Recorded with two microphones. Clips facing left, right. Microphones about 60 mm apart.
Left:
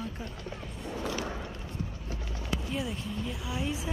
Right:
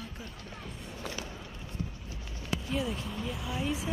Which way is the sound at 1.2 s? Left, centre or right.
Left.